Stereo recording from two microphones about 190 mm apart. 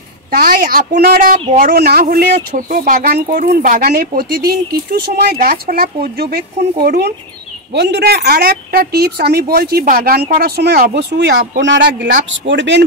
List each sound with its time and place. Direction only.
0.3 s speech: 50° right (ahead or behind); by 12.8 s 70° right (ahead or behind)